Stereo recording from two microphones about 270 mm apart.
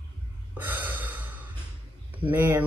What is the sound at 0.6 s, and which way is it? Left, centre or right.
Gasp, centre.